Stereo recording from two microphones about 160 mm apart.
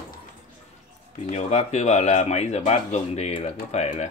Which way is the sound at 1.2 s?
45° left (ahead or behind).